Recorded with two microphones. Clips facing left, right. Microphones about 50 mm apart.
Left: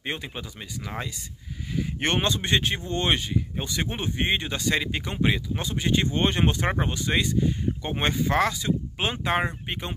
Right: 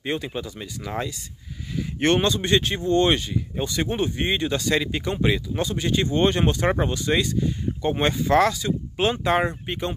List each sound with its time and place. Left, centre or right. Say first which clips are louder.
0.0 s speech: right 5 dB; left